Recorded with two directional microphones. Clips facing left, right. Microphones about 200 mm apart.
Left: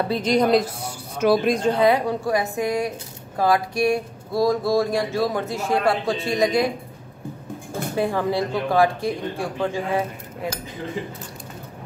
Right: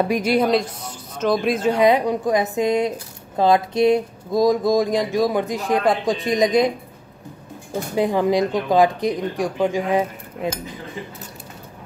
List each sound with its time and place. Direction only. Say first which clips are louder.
0.1 s speech: even; 10° right (ahead or behind); by 1.5 s 10° left (ahead or behind)
1.5 s speech: right 1 dB; 5° right (ahead or behind)
1.8 s a woman's voice: right 2 dB; 15° right (ahead or behind)
7.9 s speech: right 4 dB; 15° right (ahead or behind)